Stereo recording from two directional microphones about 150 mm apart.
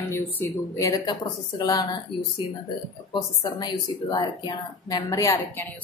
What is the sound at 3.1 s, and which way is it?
Speech, 30° left (ahead or behind).